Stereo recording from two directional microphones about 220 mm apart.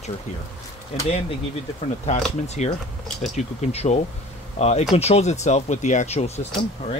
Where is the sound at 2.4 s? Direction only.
30° left (ahead or behind).